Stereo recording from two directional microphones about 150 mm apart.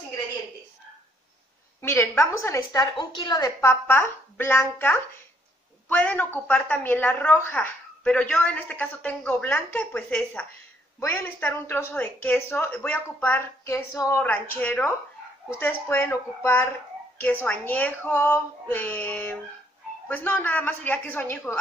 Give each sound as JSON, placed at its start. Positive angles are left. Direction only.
{"t": 1.8, "sound": "a woman's voice", "side_deg": 15}